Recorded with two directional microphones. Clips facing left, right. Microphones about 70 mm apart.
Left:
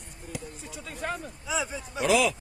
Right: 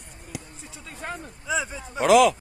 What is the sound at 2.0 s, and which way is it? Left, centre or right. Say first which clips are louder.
Speech: right 7 dB; right.